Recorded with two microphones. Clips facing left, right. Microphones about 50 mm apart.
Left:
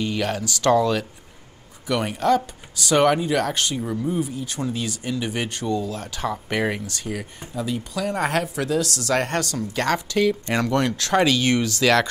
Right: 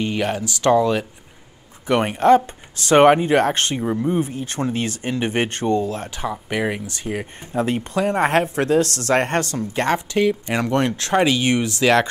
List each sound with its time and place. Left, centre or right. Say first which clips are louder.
0.0 s speech: right 2 dB; right
1.9 s speech: right 6 dB; right
6.3 s speech: right 1 dB; centre
6.9 s speech: right 3 dB; right
7.5 s speech: right 6 dB; right
8.0 s speech: right 5 dB; right
10.4 s speech: right 1 dB; centre
10.7 s speech: right 3 dB; right